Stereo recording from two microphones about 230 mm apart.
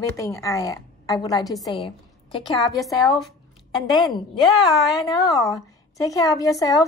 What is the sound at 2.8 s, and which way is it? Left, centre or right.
Speech, centre.